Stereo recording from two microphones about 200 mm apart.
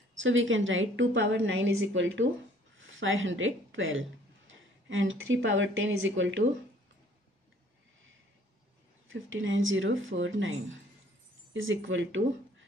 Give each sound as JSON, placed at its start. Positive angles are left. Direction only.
{"t": 0.2, "sound": "a woman's voice", "side_deg": -75}
{"t": 9.1, "sound": "a woman's voice", "side_deg": -75}